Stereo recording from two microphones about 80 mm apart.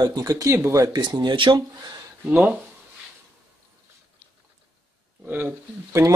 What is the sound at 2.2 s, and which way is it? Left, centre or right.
Speech, centre.